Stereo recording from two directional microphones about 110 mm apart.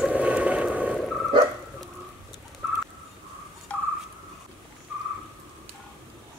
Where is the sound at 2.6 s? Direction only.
10° right (ahead or behind).